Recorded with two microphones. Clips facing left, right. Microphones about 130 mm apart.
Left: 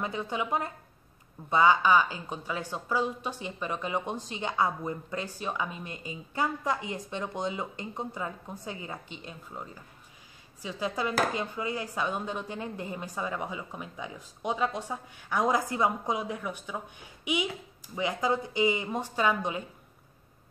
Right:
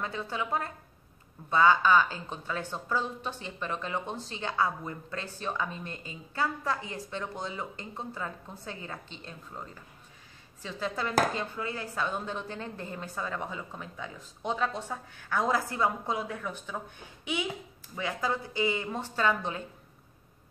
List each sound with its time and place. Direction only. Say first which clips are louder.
0.0 s a woman's voice: left 2 dB; 15° left (ahead or behind)